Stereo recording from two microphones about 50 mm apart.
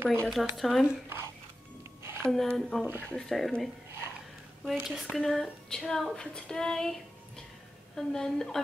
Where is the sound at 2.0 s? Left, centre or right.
Right.